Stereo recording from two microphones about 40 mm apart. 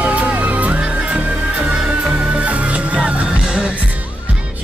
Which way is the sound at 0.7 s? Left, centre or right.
Right.